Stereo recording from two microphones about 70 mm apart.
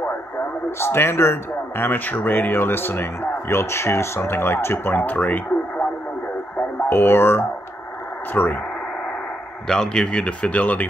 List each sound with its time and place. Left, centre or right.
0.7 s speech: left
6.9 s speech: left
9.7 s speech: centre